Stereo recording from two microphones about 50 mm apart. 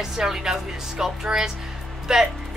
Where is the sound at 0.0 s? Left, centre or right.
Centre.